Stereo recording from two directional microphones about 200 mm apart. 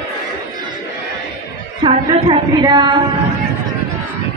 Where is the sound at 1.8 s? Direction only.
25° right (ahead or behind).